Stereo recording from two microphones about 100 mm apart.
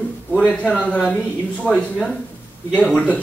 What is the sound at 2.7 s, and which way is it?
Speech, 15° left (ahead or behind).